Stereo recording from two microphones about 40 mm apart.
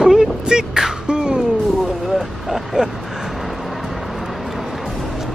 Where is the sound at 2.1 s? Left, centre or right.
Centre.